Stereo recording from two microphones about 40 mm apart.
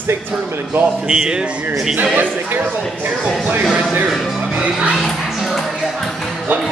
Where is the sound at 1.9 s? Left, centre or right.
Right.